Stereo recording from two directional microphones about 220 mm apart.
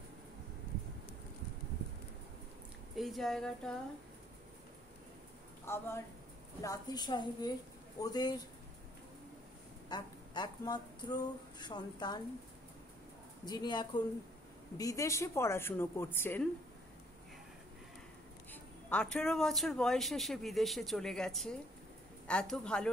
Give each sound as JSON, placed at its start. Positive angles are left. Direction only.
{"t": 3.0, "sound": "speech", "side_deg": 0}
{"t": 5.7, "sound": "a woman's voice", "side_deg": 10}
{"t": 9.8, "sound": "a sound", "side_deg": 20}
{"t": 11.0, "sound": "a woman's voice", "side_deg": 20}
{"t": 13.5, "sound": "a woman's voice", "side_deg": 20}
{"t": 18.5, "sound": "speech", "side_deg": 5}